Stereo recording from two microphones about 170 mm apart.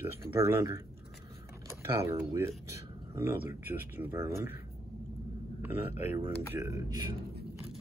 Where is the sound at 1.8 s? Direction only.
15° right (ahead or behind).